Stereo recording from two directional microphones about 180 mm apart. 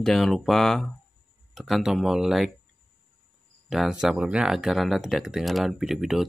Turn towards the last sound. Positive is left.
turn(degrees=-5)  # may be behind; listen again after turning